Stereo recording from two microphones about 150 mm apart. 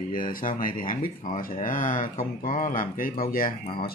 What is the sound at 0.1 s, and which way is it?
Speech, 70° left (ahead or behind).